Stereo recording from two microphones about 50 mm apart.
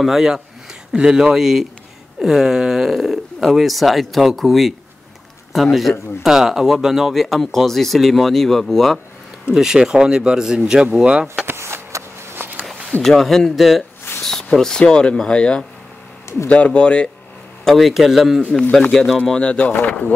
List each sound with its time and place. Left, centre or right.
0.0 s speech: centre
9.5 s speech: centre
11.4 s a sound: right
12.4 s a sound: right
13.0 s speech: centre
17.6 s speech: centre
18.8 s speech: centre
19.4 s speech: left